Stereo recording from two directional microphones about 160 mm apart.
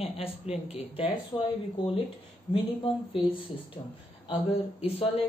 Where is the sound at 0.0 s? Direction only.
40° left (ahead or behind).